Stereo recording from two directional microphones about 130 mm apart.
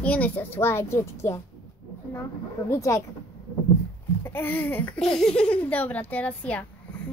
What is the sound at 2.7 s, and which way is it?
Speech, 25° left (ahead or behind).